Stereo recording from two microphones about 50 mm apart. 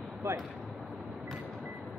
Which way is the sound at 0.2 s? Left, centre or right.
Right.